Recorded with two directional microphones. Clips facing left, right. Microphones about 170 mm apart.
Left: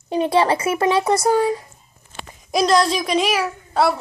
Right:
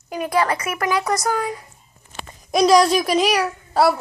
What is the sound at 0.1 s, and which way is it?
Speech, 25° left (ahead or behind).